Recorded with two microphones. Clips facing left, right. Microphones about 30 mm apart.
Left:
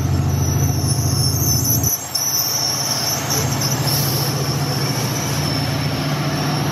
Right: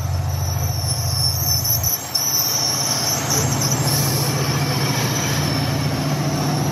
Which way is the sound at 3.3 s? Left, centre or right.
Centre.